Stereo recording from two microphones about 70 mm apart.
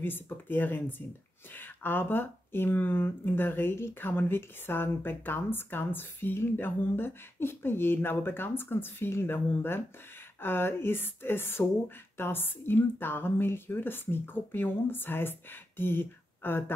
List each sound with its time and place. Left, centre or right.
0.0 s speech: left